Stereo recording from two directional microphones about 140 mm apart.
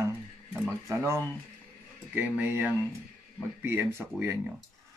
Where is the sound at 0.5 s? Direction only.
15° right (ahead or behind).